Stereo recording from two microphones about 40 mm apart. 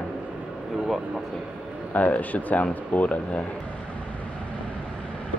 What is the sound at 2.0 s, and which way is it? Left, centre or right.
Speech, left.